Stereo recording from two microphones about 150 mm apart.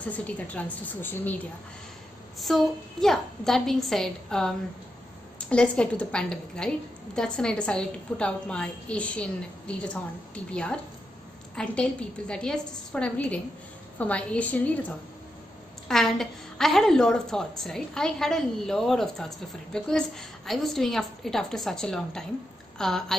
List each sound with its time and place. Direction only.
0.0 s a woman's voice: 10° left (ahead or behind)
2.3 s a woman's voice: centre (ahead or behind)